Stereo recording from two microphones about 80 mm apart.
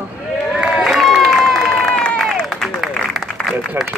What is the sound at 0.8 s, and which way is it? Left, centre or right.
Run, centre.